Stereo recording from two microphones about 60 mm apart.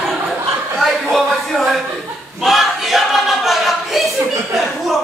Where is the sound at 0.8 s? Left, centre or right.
Centre.